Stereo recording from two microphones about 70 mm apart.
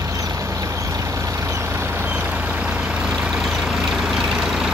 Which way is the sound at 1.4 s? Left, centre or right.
Right.